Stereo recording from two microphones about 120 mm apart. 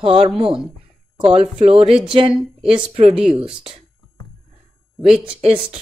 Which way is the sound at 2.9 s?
55° right (ahead or behind).